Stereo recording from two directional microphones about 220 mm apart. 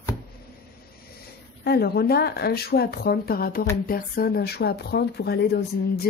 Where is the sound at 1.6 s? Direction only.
45° left (ahead or behind).